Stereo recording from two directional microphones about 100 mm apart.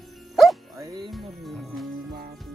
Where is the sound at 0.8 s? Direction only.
40° right (ahead or behind).